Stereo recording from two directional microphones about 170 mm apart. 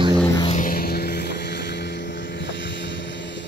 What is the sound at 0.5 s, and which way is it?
Vehicle, 50° left (ahead or behind).